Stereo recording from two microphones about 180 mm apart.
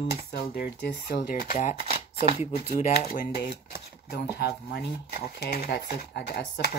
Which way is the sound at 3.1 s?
55° left (ahead or behind).